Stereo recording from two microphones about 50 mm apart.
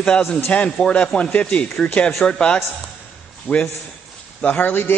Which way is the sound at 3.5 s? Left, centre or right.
Left.